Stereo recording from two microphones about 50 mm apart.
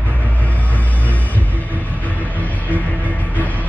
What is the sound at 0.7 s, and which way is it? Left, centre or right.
Music, left.